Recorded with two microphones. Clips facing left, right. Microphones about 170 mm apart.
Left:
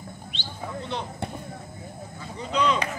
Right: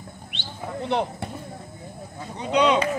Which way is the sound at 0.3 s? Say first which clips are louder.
Right 2 dB; 65° right (ahead or behind).